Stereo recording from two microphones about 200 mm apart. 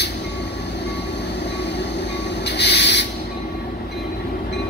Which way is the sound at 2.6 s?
60° left (ahead or behind).